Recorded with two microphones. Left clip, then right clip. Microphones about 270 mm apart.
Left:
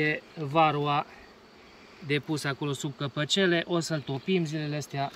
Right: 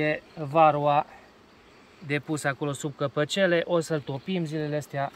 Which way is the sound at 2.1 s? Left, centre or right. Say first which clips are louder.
Right 2 dB; centre.